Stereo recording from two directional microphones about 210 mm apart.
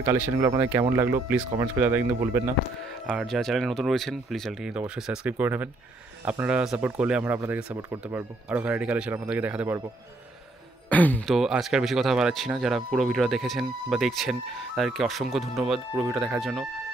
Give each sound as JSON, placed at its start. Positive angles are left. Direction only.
{"t": 0.0, "sound": "speech", "side_deg": -10}
{"t": 3.1, "sound": "speech", "side_deg": 0}
{"t": 10.9, "sound": "speech", "side_deg": 5}